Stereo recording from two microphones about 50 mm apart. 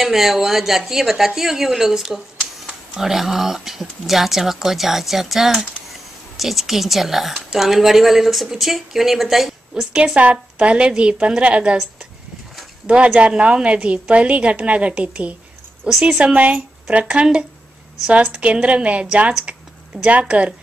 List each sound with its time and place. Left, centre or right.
0.0 s speech: centre
9.9 s a woman's voice: right
12.8 s a woman's voice: right